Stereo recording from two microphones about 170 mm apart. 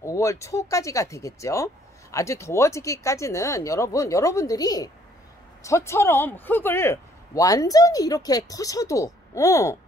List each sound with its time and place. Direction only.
0.0 s speech: 20° left (ahead or behind)